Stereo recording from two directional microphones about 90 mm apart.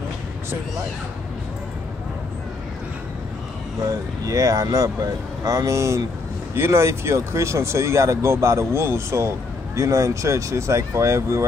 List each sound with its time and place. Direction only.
3.8 s speech: 40° right (ahead or behind)